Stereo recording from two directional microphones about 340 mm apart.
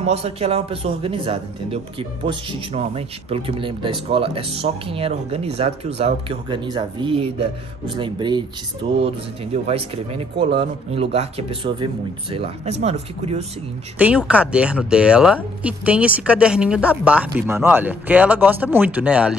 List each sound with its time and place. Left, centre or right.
0.0 s a man's voice: centre
13.9 s speech: centre